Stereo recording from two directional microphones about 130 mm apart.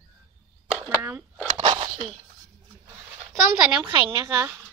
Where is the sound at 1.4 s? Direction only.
35° right (ahead or behind).